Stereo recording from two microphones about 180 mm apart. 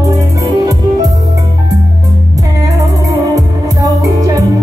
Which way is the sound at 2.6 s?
20° right (ahead or behind).